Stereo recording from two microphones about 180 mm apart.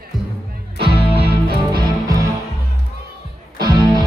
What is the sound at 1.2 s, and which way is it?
Music, 60° right (ahead or behind).